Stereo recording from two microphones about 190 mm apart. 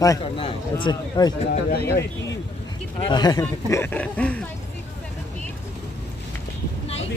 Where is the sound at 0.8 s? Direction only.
20° left (ahead or behind).